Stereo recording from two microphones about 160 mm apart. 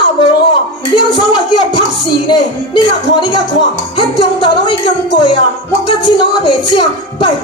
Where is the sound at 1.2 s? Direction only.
30° left (ahead or behind).